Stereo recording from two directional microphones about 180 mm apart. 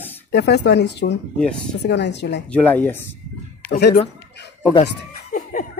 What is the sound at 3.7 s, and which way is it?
Speech, 60° left (ahead or behind).